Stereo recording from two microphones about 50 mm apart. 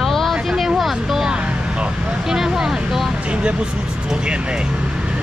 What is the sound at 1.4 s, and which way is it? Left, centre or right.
Vehicle, right.